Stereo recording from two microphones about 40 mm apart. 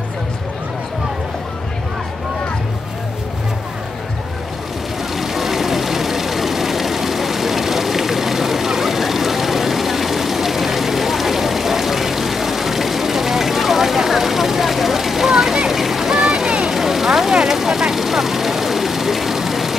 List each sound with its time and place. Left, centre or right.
5.1 s vehicle: centre
15.8 s a sound: centre
16.7 s vehicle: centre